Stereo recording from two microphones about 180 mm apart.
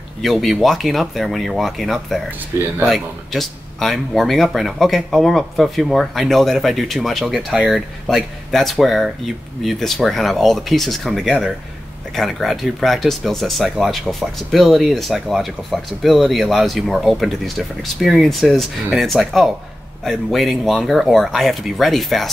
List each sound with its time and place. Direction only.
0.2 s speech: centre (ahead or behind)